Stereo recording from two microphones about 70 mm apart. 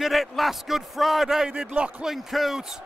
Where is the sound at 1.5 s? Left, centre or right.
Centre.